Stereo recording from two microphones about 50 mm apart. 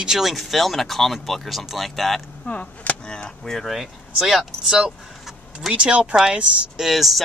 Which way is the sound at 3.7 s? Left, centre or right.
Centre.